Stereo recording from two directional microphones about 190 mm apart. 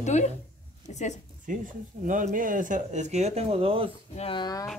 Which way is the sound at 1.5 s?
45° right (ahead or behind).